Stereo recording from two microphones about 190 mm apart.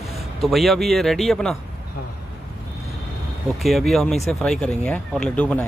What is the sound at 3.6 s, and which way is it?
Speech, centre (ahead or behind).